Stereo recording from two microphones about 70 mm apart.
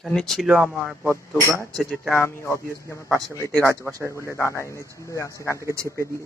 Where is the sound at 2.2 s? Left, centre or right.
Left.